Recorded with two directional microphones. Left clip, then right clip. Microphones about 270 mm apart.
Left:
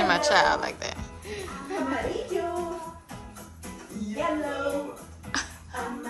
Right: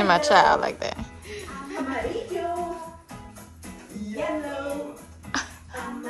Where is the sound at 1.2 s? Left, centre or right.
Left.